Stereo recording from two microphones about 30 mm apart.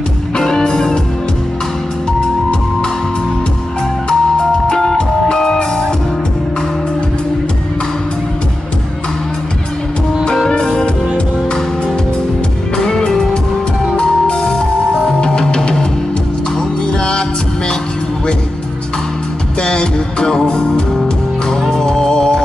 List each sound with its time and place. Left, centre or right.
0.4 s music: centre
4.1 s music: left
12.7 s music: left
15.1 s music: left
16.9 s music: left
19.6 s music: left